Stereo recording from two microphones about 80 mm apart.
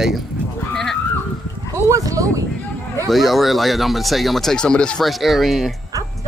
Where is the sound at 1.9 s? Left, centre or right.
Right.